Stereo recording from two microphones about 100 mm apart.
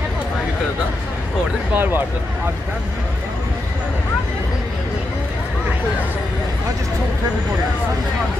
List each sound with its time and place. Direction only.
1.8 s speech: 20° right (ahead or behind)